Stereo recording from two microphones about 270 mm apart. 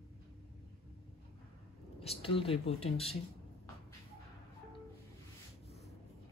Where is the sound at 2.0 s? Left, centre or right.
Left.